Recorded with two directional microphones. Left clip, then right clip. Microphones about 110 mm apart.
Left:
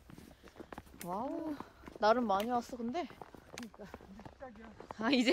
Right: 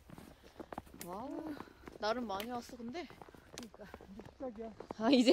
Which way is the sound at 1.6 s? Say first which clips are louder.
Left 7 dB; 5° left (ahead or behind).